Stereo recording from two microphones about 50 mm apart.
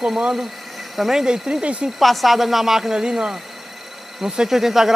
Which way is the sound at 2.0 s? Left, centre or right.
Centre.